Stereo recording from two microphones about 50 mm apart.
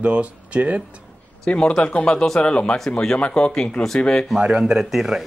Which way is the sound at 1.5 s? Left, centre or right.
Centre.